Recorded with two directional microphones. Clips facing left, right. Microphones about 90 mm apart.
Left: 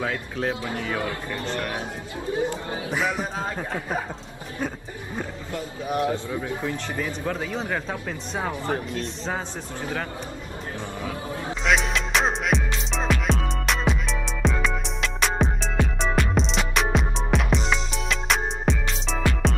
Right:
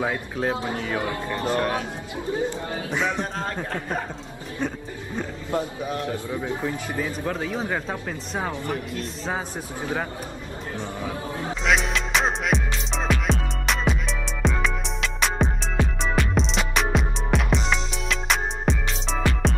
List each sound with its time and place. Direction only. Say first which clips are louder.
0.0 s speech: right 2 dB; 20° right (ahead or behind)
2.3 s speech: left 1 dB; 20° left (ahead or behind)
2.9 s speech: even; 5° left (ahead or behind)
4.6 s roaring cats: right 1 dB; 10° left (ahead or behind)
5.9 s a man's voice: left 4 dB; 20° left (ahead or behind)
6.2 s speech: right 1 dB; 15° right (ahead or behind)
7.2 s speech: even; centre (ahead or behind)
11.6 s music: even; centre (ahead or behind)